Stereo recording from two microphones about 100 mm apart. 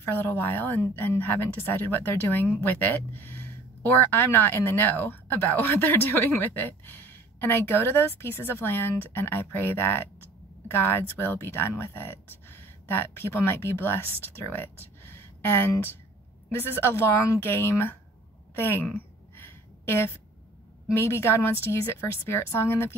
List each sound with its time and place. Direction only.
0.0 s speech: 20° left (ahead or behind)
16.9 s speech: 25° left (ahead or behind)
19.3 s a sound: 20° left (ahead or behind)
20.9 s speech: 25° left (ahead or behind)